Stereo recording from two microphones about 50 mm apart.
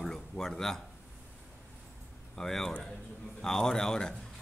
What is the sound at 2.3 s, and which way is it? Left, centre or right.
A man's voice, centre.